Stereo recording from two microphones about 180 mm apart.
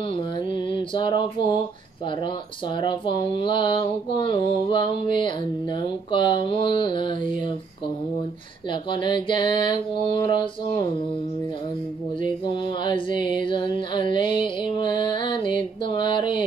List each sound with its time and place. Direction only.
0.1 s a sound: 30° left (ahead or behind)
2.0 s speech: 25° left (ahead or behind)
8.9 s speech: 25° left (ahead or behind)
12.2 s speech: 25° left (ahead or behind)
14.1 s music: 25° left (ahead or behind)